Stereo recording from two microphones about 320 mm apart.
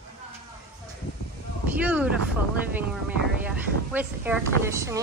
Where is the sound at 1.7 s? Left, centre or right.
Centre.